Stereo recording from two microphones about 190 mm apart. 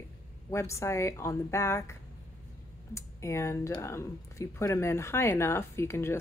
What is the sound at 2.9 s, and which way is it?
Speech, 15° left (ahead or behind).